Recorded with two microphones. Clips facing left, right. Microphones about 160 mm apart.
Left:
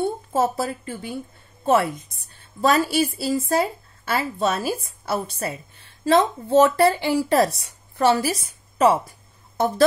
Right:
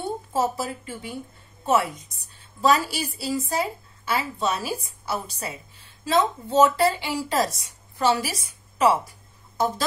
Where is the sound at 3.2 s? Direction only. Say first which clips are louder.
Left 5 dB; 50° left (ahead or behind).